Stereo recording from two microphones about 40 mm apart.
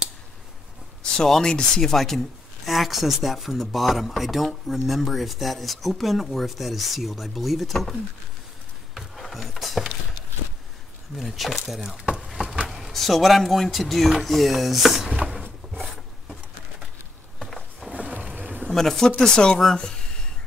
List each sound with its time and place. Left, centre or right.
1.8 s speech: centre
8.9 s a sound: centre
11.1 s speech: centre
12.1 s a sound: centre
12.9 s speech: centre
17.9 s music: right
18.7 s speech: centre